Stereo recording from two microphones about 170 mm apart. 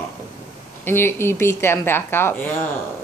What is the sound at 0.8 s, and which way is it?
A woman's voice, 15° left (ahead or behind).